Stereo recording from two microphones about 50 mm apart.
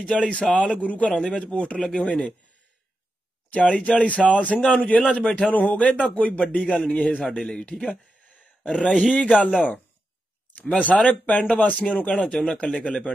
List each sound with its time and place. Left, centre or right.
0.0 s speech: centre
3.5 s speech: left
7.3 s a man's voice: centre
10.5 s speech: left